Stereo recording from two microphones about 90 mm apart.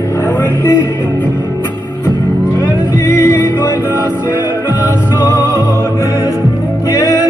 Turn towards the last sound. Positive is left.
turn(degrees=40)  # may be behind; listen again after turning